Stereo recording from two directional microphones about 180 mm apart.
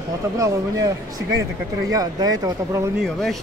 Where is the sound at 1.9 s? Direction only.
20° right (ahead or behind).